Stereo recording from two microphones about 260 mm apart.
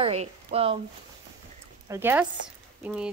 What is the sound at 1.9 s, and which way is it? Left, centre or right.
Speech, centre.